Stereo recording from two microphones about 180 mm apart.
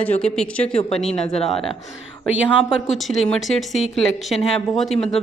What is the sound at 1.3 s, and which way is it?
Speech, 35° left (ahead or behind).